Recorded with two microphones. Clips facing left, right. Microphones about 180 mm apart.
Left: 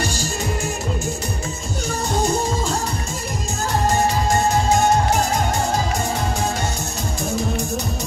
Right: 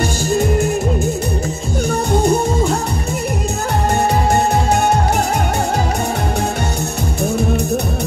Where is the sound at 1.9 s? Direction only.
60° right (ahead or behind).